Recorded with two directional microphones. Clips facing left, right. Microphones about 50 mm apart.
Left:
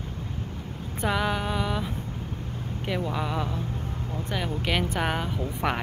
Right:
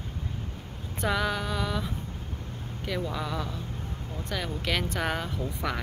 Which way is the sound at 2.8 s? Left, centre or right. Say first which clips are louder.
Left 3 dB; centre.